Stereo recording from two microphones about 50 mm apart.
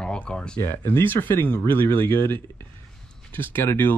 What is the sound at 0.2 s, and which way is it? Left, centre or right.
Speech, centre.